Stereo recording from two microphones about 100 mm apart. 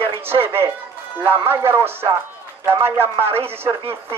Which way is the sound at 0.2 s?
25° right (ahead or behind).